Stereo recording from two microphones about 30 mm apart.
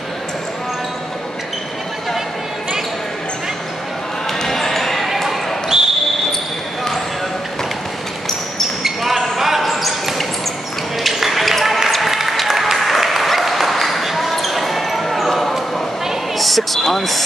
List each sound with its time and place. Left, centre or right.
4.4 s basketball bounce: centre
5.0 s basketball bounce: centre
5.7 s basketball bounce: centre
9.0 s basketball bounce: centre
11.1 s a sound: centre
11.9 s applause: centre
16.3 s a sound: centre